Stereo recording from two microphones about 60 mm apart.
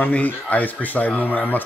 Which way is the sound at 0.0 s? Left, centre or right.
Left.